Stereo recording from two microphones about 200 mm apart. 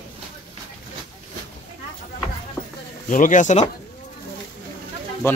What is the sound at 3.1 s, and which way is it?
Speech, 40° left (ahead or behind).